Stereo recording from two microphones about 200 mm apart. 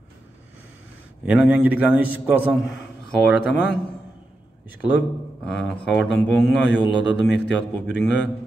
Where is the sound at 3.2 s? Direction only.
5° right (ahead or behind).